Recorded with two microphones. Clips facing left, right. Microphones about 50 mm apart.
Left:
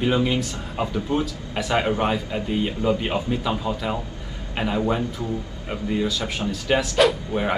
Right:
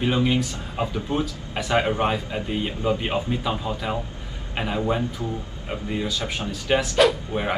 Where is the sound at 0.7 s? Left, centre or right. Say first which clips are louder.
Left 2 dB; centre.